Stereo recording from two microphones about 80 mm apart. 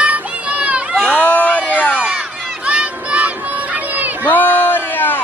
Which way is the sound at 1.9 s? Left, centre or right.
Centre.